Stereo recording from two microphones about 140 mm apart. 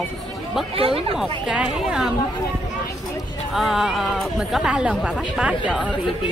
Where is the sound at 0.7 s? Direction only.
40° right (ahead or behind).